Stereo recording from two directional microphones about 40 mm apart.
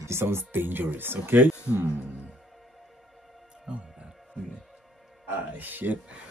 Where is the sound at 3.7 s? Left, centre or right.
Right.